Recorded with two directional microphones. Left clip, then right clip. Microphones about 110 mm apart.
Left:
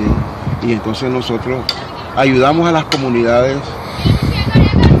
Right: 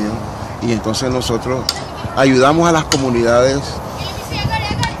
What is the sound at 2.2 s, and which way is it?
A man's voice, 25° right (ahead or behind).